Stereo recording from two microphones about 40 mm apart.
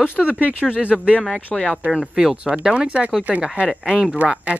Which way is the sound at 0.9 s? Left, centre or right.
Left.